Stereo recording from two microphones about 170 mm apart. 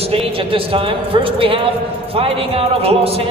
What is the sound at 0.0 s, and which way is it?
A man's voice, 35° right (ahead or behind).